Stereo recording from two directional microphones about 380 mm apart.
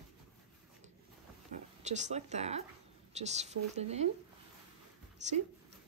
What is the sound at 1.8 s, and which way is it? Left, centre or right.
A woman's voice, centre.